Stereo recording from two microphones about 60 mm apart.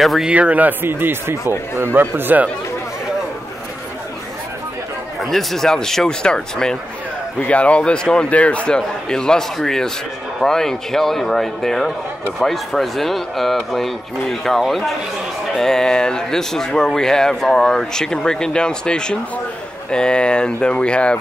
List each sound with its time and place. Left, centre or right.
0.0 s speech: centre
0.3 s speech: right
1.3 s speech: left
1.8 s speech: right
5.2 s speech: centre